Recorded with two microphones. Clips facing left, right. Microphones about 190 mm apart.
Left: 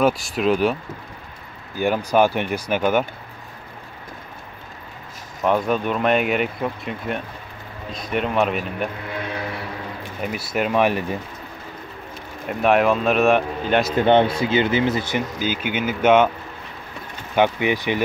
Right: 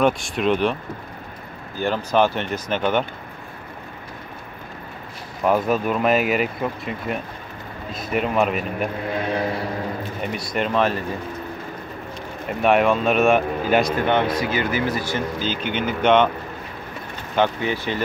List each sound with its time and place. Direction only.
0.0 s speech: centre (ahead or behind)
1.8 s speech: 15° left (ahead or behind)
5.4 s speech: 5° right (ahead or behind)
10.2 s speech: 5° left (ahead or behind)
12.4 s speech: centre (ahead or behind)
13.9 s speech: 30° left (ahead or behind); by 16.3 s 5° left (ahead or behind)
17.4 s speech: 15° left (ahead or behind)